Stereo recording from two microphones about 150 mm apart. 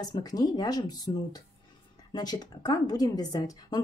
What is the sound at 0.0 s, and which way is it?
A woman's voice, 25° left (ahead or behind).